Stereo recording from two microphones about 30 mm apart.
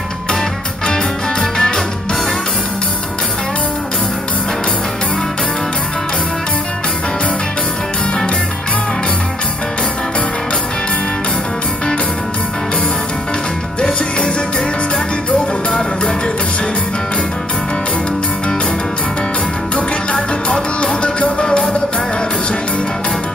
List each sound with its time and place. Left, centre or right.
0.8 s music: left
13.7 s music: left
20.2 s music: left
20.8 s music: left
21.5 s music: left